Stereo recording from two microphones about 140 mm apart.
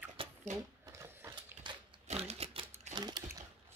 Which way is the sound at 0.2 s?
40° right (ahead or behind).